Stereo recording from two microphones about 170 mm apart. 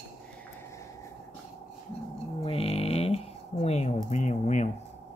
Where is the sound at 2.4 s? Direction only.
35° left (ahead or behind).